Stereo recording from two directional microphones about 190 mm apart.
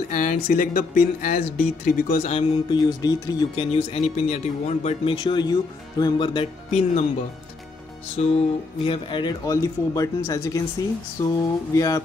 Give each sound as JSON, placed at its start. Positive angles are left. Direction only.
{"t": 0.1, "sound": "speech", "side_deg": 40}
{"t": 2.3, "sound": "speech", "side_deg": 20}
{"t": 3.7, "sound": "speech", "side_deg": 30}
{"t": 8.2, "sound": "speech", "side_deg": 35}